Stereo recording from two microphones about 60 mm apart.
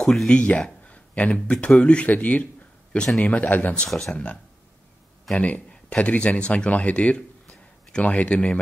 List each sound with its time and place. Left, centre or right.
0.0 s speech: centre
0.3 s speech: centre
5.4 s speech: left
7.2 s a sound: centre
8.0 s speech: left